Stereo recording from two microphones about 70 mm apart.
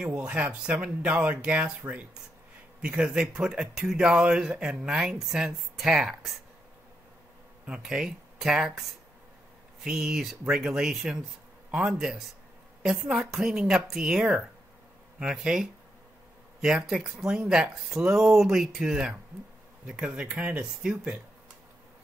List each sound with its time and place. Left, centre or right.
0.0 s speech: centre
7.6 s speech: centre